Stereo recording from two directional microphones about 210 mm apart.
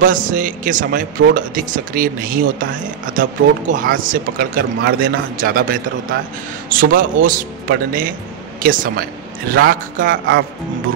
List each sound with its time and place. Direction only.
0.0 s a man's voice: 40° right (ahead or behind)